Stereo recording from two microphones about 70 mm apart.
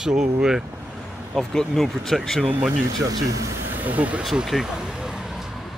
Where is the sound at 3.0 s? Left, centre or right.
Right.